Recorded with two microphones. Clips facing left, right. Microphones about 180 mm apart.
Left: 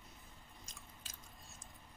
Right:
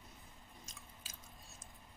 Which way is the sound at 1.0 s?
Centre (ahead or behind).